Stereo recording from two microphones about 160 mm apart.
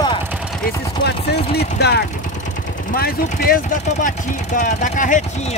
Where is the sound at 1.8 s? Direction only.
90° left.